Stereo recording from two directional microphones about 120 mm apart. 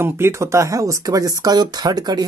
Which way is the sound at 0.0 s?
20° right (ahead or behind).